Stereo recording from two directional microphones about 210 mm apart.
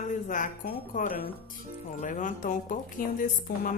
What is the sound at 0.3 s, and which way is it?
A woman's voice, 40° left (ahead or behind).